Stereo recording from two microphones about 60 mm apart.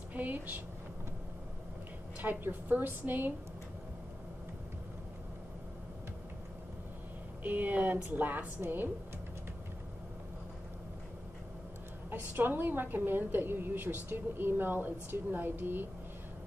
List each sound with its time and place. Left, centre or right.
0.1 s a sound: right
2.1 s a woman's voice: right
7.4 s a woman's voice: right
12.1 s a woman's voice: right